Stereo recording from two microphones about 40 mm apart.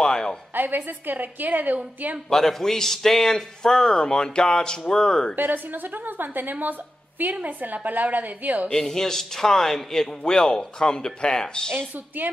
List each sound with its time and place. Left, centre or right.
0.0 s a sound: centre
0.6 s a woman's voice: right
2.2 s a man's voice: centre
5.3 s a woman's voice: right
8.7 s a man's voice: centre